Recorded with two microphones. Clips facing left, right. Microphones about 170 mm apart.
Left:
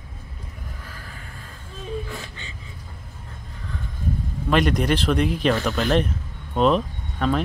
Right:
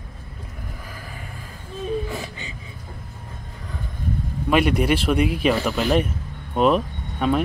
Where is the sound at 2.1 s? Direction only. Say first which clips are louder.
Right 5 dB; 15° right (ahead or behind).